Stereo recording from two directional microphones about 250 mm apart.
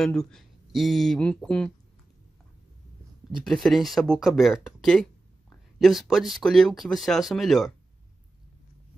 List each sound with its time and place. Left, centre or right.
0.0 s speech: centre
3.4 s speech: centre